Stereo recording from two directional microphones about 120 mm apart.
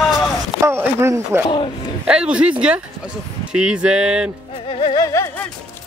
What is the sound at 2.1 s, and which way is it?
Speech, 10° right (ahead or behind).